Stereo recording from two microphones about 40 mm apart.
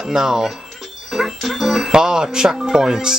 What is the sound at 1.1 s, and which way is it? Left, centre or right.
Music, centre.